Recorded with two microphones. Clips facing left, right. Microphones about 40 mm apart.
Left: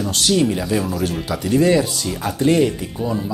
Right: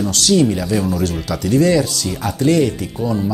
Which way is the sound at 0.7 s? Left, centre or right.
Centre.